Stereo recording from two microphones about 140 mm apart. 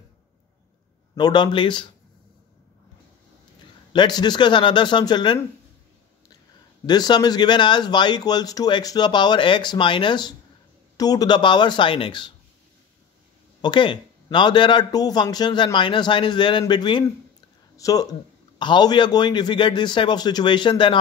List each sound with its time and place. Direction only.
1.1 s speech: 30° left (ahead or behind)
3.9 s speech: 30° left (ahead or behind)
6.9 s speech: 30° left (ahead or behind)
13.6 s speech: 35° left (ahead or behind)